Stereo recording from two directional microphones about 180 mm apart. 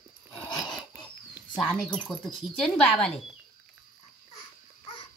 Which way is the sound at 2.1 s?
25° left (ahead or behind).